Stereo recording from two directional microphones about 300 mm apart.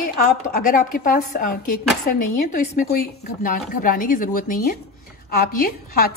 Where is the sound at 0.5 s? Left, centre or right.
Left.